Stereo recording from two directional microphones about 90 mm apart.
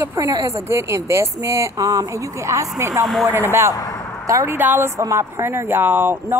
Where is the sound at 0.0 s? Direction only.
35° right (ahead or behind).